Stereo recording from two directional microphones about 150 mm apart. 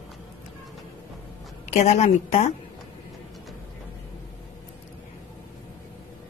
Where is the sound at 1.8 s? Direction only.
50° left (ahead or behind).